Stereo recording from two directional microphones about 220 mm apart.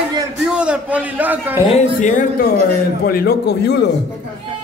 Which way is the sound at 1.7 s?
30° left (ahead or behind).